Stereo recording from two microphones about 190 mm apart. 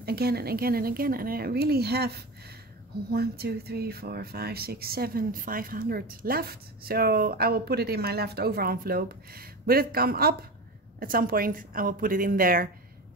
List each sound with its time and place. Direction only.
0.0 s speech: 55° right (ahead or behind)